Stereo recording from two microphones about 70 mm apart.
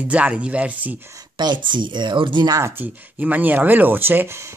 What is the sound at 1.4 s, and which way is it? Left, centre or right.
Speech, right.